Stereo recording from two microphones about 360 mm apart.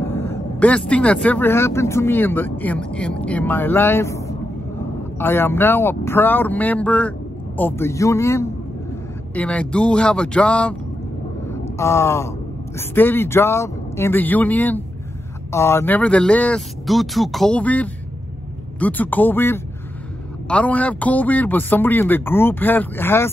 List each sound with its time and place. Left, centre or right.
0.0 s speech: centre
11.6 s a sound: centre
12.7 s speech: centre